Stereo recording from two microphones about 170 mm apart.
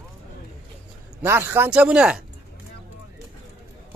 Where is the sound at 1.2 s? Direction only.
15° right (ahead or behind).